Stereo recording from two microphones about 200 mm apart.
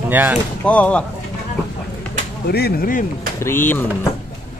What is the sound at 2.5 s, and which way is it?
Speech, 50° left (ahead or behind).